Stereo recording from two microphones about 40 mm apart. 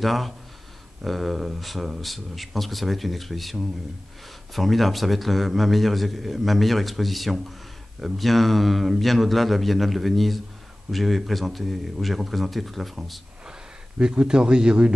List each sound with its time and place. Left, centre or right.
0.0 s a man's voice: centre
4.6 s a man's voice: centre
13.5 s a man's voice: right